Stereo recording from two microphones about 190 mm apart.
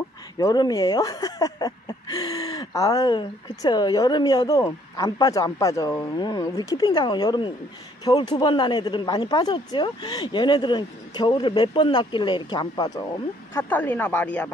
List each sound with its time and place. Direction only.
0.4 s speech: 20° left (ahead or behind)
13.6 s speech: 10° left (ahead or behind)